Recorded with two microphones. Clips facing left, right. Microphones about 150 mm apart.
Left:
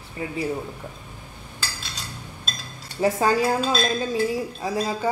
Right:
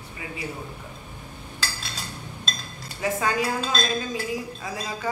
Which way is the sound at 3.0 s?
30° left (ahead or behind).